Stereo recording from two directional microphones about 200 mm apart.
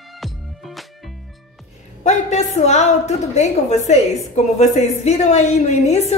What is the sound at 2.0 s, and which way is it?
A woman's voice, 35° left (ahead or behind).